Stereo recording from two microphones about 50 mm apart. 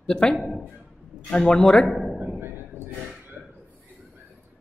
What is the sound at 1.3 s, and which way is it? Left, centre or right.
Speech, centre.